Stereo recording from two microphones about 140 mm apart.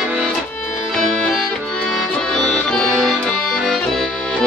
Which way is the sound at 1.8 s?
5° left (ahead or behind).